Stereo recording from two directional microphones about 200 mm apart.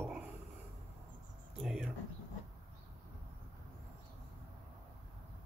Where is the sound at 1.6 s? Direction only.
Centre (ahead or behind).